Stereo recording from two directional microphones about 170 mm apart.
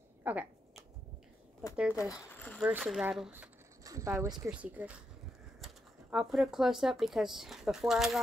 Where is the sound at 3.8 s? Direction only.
20° right (ahead or behind).